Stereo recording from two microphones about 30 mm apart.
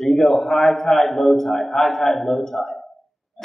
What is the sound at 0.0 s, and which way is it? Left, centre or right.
A man's voice, centre.